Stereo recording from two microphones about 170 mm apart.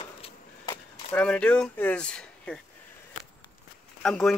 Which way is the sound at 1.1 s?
5° left (ahead or behind).